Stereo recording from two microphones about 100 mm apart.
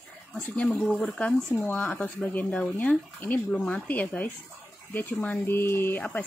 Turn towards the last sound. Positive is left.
turn(degrees=15)  # may be behind; listen again after turning